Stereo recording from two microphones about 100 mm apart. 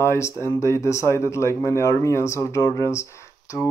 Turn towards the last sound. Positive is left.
turn(degrees=30)  # may be behind; listen again after turning